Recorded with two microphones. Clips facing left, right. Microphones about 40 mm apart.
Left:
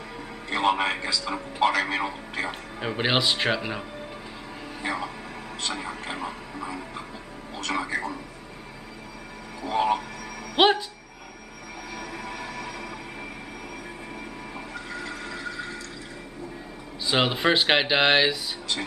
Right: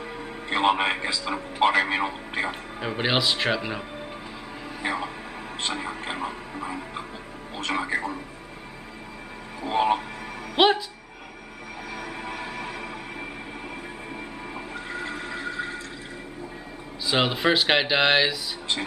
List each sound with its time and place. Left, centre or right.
0.5 s speech: right
2.8 s speech: centre
4.8 s speech: centre
9.6 s speech: right
10.6 s speech: centre
11.9 s music: right
14.7 s a sound: right
17.0 s speech: centre